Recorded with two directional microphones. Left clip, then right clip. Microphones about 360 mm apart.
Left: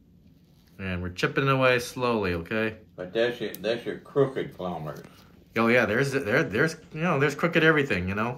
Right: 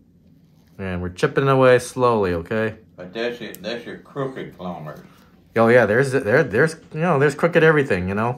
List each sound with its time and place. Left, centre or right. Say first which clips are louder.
0.7 s speech: right 6 dB; right
3.1 s speech: even; centre
5.5 s speech: right 8 dB; right